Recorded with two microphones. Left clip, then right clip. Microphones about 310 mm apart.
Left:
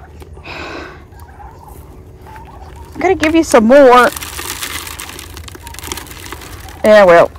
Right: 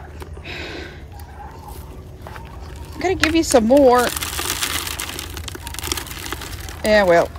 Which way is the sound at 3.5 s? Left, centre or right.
Left.